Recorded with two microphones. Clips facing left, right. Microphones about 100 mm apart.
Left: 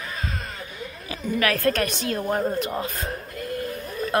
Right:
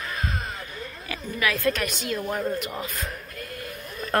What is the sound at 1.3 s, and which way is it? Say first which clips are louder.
A woman's voice: left 3 dB; 50° left (ahead or behind).